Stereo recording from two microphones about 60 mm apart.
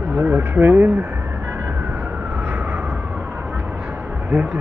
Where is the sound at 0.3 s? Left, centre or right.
Right.